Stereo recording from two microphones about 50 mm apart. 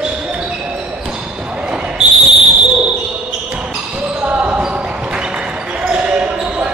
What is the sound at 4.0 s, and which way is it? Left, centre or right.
Basketball bounce, right.